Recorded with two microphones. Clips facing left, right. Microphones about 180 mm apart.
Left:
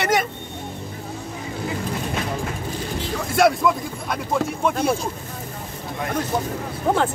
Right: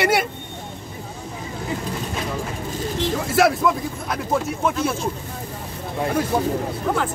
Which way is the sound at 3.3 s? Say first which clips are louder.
Left 1 dB; centre (ahead or behind).